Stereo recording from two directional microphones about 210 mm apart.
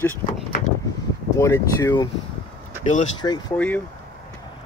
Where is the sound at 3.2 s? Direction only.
20° left (ahead or behind).